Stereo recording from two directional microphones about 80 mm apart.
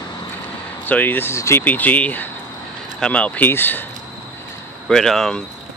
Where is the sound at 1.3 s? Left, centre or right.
Left.